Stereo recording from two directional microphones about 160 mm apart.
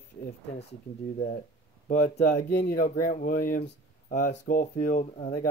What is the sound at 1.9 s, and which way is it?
Speech, 50° left (ahead or behind).